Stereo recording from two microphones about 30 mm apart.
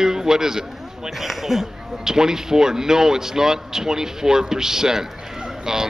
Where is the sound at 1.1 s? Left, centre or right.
Centre.